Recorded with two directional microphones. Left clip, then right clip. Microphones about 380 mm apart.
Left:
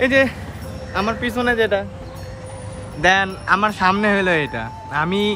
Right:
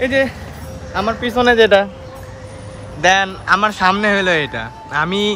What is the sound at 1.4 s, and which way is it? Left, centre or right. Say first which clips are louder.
Speech: right 8 dB; right.